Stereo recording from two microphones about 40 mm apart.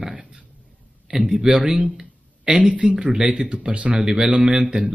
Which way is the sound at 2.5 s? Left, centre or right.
Right.